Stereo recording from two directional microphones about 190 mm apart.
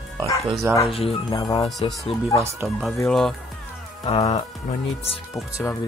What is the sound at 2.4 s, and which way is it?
Speech, 15° right (ahead or behind).